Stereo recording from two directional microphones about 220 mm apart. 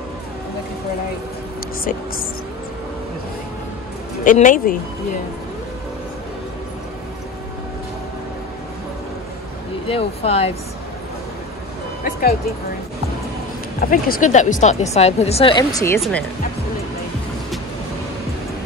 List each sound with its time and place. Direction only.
4.2 s speech: 35° left (ahead or behind)
9.8 s speech: 25° left (ahead or behind)
12.0 s vehicle: 40° left (ahead or behind)
13.7 s speech: 40° left (ahead or behind); by 16.3 s 5° left (ahead or behind)